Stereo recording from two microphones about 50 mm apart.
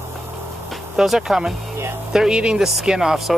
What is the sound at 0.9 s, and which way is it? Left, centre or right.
Speech, centre.